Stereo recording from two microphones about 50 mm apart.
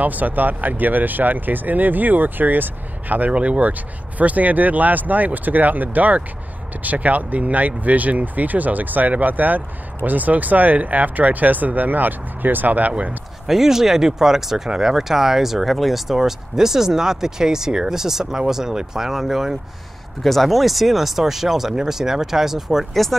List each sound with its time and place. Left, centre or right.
0.0 s speech: right
13.5 s speech: centre